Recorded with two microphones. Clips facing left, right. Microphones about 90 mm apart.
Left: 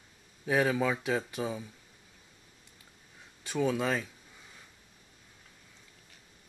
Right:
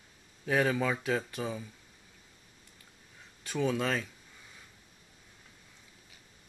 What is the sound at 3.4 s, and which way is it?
Speech, 5° left (ahead or behind).